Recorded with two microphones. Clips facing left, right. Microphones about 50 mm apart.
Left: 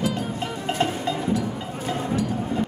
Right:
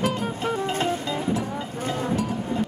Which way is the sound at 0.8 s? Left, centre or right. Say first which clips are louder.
Left 1 dB; left.